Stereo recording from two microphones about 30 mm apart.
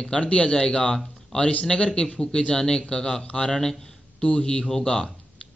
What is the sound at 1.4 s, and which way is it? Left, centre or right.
A man's voice, left.